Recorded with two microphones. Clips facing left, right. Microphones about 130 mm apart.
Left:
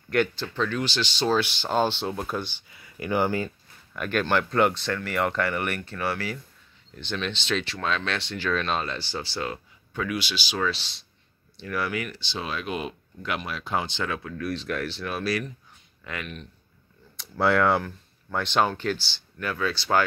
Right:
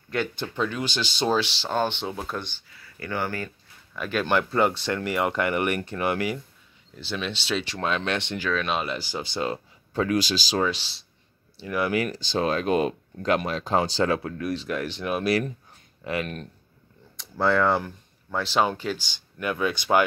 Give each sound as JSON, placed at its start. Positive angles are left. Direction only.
{"t": 0.6, "sound": "speech", "side_deg": -10}
{"t": 1.7, "sound": "speech", "side_deg": 10}
{"t": 2.7, "sound": "speech", "side_deg": 20}
{"t": 3.9, "sound": "speech", "side_deg": 0}
{"t": 7.0, "sound": "speech", "side_deg": -5}
{"t": 8.5, "sound": "speech", "side_deg": -5}
{"t": 9.9, "sound": "speech", "side_deg": -40}
{"t": 11.5, "sound": "speech", "side_deg": -15}
{"t": 11.9, "sound": "speech", "side_deg": -35}
{"t": 14.4, "sound": "speech", "side_deg": -10}
{"t": 16.0, "sound": "speech", "side_deg": -30}
{"t": 17.2, "sound": "speech", "side_deg": 5}
{"t": 19.1, "sound": "speech", "side_deg": -15}